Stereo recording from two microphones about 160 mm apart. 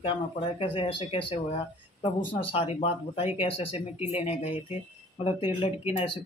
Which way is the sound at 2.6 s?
40° left (ahead or behind).